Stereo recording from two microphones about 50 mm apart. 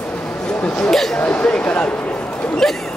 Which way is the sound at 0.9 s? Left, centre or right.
Centre.